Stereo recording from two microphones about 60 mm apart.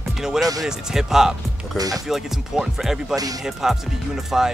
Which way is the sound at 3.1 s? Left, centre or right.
Right.